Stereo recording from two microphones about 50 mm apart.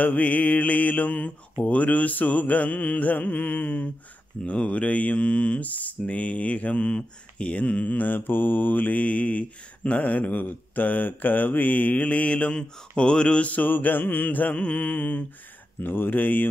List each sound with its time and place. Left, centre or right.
0.0 s mantra: left
4.7 s speech: left
7.7 s mantra: left
13.5 s mantra: left
15.8 s mantra: left